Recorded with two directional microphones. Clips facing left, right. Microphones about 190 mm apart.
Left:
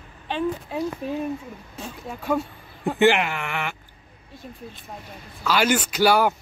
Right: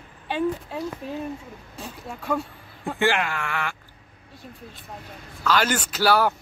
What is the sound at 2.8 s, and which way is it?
Speech, 20° left (ahead or behind).